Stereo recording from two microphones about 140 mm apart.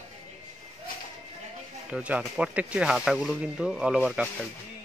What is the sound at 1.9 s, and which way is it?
Speech, 10° right (ahead or behind).